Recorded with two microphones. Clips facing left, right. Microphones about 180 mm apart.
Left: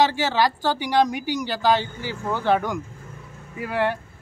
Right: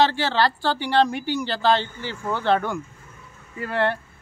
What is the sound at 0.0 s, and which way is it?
Speech, 10° left (ahead or behind).